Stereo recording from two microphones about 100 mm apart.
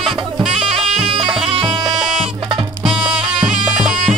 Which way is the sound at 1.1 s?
55° right (ahead or behind).